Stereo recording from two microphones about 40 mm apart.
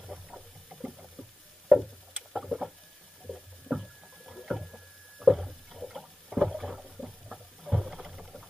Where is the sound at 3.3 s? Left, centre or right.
Centre.